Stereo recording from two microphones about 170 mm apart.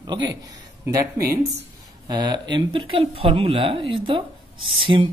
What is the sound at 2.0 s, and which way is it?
Speech, 25° right (ahead or behind).